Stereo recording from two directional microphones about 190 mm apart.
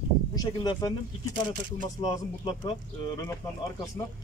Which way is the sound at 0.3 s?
20° left (ahead or behind).